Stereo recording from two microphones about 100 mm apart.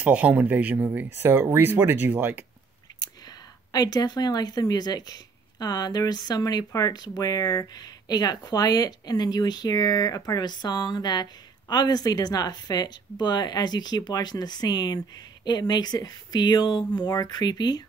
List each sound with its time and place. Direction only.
0.0 s speech: 15° right (ahead or behind)
3.0 s speech: 40° left (ahead or behind)